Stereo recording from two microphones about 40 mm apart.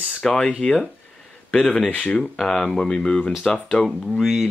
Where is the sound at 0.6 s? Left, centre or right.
Left.